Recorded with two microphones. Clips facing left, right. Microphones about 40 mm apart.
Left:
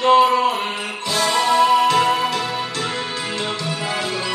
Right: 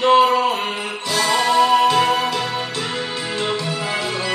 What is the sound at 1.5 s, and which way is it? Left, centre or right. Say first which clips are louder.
Music: even; right.